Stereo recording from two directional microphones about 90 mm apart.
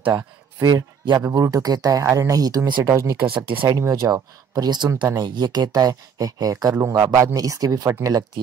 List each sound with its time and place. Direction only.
0.1 s a man's voice: 45° right (ahead or behind)
3.3 s speech: 75° right (ahead or behind)
3.6 s speech: 40° right (ahead or behind)